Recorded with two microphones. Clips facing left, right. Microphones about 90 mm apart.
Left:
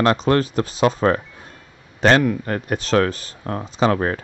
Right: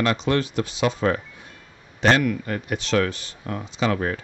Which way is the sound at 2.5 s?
40° left (ahead or behind).